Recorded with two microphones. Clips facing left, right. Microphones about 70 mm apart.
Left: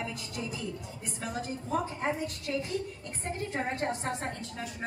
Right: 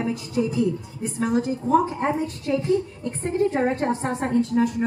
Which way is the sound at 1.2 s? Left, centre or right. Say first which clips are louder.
Right 13 dB; right.